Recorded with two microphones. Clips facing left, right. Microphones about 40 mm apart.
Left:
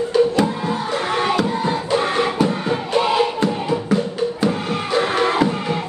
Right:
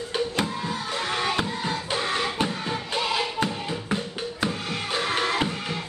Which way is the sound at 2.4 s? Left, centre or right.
Left.